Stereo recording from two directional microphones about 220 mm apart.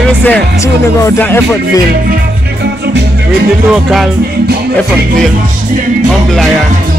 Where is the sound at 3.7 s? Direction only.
Centre (ahead or behind).